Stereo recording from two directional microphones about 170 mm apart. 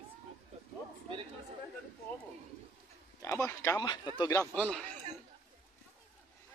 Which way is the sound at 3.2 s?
15° left (ahead or behind).